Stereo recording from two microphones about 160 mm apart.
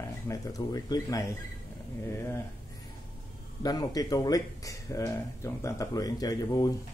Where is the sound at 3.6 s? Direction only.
25° left (ahead or behind).